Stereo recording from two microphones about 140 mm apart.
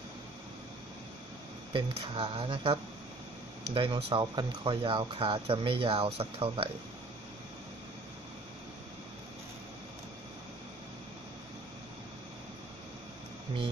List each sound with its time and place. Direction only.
1.7 s speech: 40° right (ahead or behind)